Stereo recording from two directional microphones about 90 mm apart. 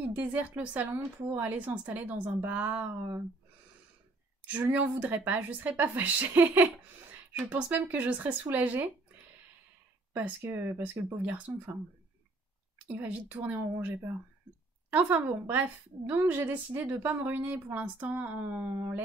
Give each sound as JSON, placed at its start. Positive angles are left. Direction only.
{"t": 0.1, "sound": "speech", "side_deg": -15}
{"t": 4.7, "sound": "speech", "side_deg": -20}
{"t": 10.1, "sound": "speech", "side_deg": -20}
{"t": 12.8, "sound": "speech", "side_deg": -20}
{"t": 18.8, "sound": "speech", "side_deg": -25}